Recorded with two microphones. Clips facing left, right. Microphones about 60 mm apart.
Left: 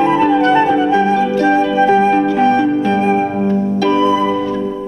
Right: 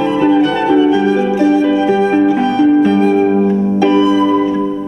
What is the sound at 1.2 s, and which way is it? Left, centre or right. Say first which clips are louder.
Music: right 1 dB; right.